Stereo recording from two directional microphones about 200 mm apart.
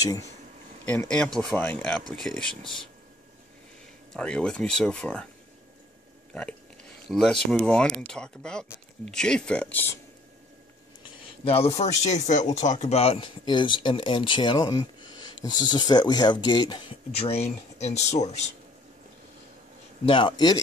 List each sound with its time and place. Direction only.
0.8 s speech: 5° left (ahead or behind)
4.1 s speech: 5° left (ahead or behind)
6.3 s speech: 5° left (ahead or behind)
11.4 s speech: 30° left (ahead or behind)
17.2 s speech: 30° left (ahead or behind)
20.1 s speech: 25° left (ahead or behind)